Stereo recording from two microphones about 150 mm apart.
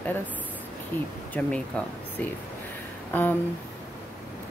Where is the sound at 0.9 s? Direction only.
15° left (ahead or behind).